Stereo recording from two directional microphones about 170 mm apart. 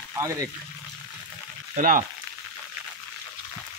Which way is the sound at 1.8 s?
50° right (ahead or behind).